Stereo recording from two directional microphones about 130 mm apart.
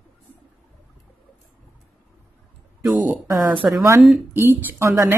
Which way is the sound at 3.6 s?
5° right (ahead or behind).